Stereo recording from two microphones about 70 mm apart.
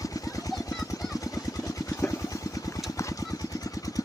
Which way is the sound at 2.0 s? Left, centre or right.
Left.